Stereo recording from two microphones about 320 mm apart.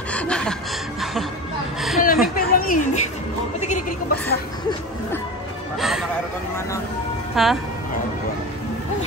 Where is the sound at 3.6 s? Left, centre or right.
Left.